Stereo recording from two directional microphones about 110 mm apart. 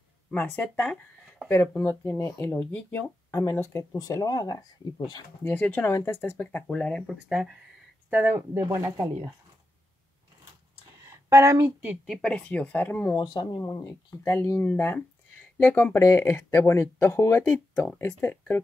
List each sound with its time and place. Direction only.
0.3 s speech: 15° left (ahead or behind)
2.0 s speech: 30° left (ahead or behind)
5.4 s speech: 15° left (ahead or behind)
6.7 s speech: 10° left (ahead or behind)
7.2 s speech: 5° right (ahead or behind)
8.1 s speech: 20° right (ahead or behind)
11.2 s a woman's voice: 30° right (ahead or behind)
12.1 s speech: 10° left (ahead or behind)
13.1 s speech: 40° left (ahead or behind)
13.6 s speech: 30° left (ahead or behind)